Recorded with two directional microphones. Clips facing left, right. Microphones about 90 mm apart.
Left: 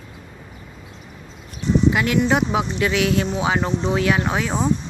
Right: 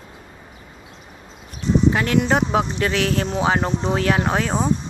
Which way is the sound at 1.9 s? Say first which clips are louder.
Even; 40° right (ahead or behind).